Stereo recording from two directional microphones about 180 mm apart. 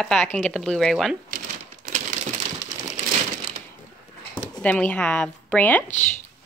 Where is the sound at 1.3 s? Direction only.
50° right (ahead or behind).